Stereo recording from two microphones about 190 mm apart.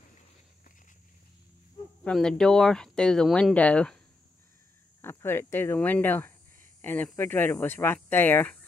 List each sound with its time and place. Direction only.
2.0 s speech: 5° left (ahead or behind)
5.0 s speech: 10° left (ahead or behind)